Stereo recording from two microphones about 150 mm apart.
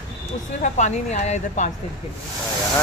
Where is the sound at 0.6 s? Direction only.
50° left (ahead or behind).